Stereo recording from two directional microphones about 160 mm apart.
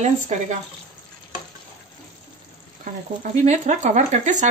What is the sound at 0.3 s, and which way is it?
Speech, 50° right (ahead or behind).